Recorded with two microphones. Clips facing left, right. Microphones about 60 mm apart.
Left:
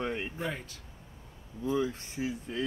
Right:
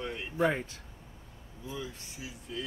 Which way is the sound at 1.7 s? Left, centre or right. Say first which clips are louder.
Left 10 dB; left.